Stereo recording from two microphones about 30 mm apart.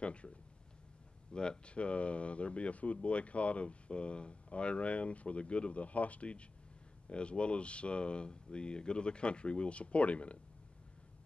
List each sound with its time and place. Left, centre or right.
0.0 s speech: left
1.3 s speech: left
7.1 s speech: left